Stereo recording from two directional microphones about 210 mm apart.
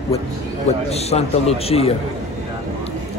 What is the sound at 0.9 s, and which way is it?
A man's voice, 30° left (ahead or behind).